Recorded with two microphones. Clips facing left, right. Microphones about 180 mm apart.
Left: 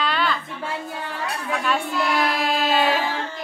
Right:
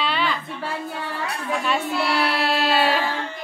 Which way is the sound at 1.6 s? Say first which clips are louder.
Even; 5° right (ahead or behind).